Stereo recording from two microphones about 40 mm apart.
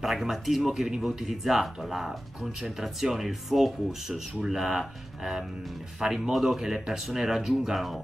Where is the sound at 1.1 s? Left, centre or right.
Centre.